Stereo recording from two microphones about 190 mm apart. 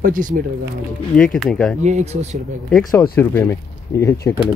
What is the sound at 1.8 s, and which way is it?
Speech, 35° right (ahead or behind).